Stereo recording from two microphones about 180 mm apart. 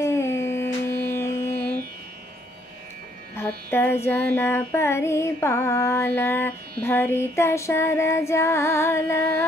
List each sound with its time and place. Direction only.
0.0 s carnatic music: 15° left (ahead or behind)
3.3 s child singing: 10° left (ahead or behind)